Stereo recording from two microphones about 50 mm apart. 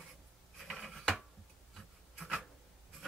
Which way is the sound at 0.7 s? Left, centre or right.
Centre.